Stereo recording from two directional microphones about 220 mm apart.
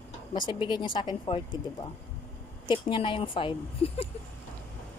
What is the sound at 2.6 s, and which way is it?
Speech, 20° left (ahead or behind).